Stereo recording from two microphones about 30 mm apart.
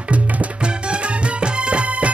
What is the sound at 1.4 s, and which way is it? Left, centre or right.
Music, right.